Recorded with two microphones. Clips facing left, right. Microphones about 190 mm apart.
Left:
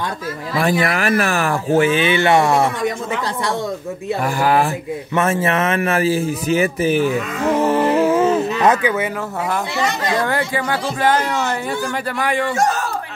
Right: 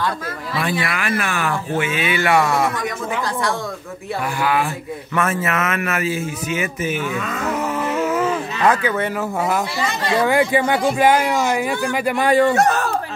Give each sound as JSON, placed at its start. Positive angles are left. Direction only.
{"t": 0.6, "sound": "speech", "side_deg": 40}
{"t": 4.4, "sound": "speech", "side_deg": 40}
{"t": 5.1, "sound": "a man's voice", "side_deg": 25}
{"t": 10.2, "sound": "speech", "side_deg": -15}
{"t": 12.3, "sound": "speech", "side_deg": -40}
{"t": 12.5, "sound": "speech", "side_deg": -60}